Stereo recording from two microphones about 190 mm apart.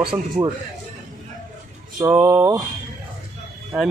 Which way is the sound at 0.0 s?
25° right (ahead or behind).